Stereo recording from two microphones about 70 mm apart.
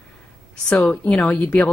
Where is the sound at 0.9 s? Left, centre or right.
Centre.